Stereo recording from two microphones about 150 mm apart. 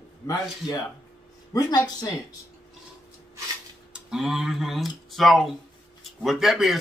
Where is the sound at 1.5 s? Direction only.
25° left (ahead or behind).